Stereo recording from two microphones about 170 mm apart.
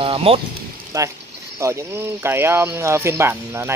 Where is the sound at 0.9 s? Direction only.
20° right (ahead or behind).